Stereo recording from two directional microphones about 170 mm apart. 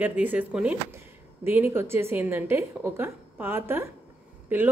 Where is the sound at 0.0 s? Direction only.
10° right (ahead or behind).